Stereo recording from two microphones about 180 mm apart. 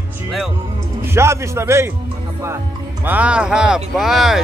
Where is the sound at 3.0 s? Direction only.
10° right (ahead or behind).